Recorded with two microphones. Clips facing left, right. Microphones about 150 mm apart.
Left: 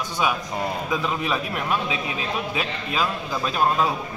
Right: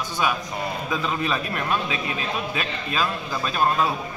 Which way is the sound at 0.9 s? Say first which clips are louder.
Right 2 dB; 15° left (ahead or behind).